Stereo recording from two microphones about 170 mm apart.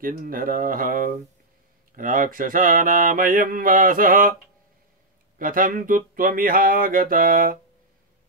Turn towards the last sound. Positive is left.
turn(degrees=-55)  # may be behind; listen again after turning